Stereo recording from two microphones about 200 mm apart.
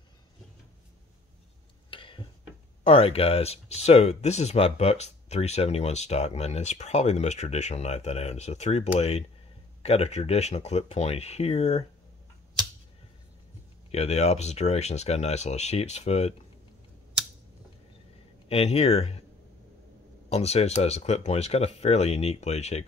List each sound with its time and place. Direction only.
1.9 s tick-tock: 25° left (ahead or behind)
2.8 s speech: 30° left (ahead or behind)
13.9 s speech: 30° left (ahead or behind)
18.5 s speech: 30° left (ahead or behind)
20.2 s speech: 30° left (ahead or behind)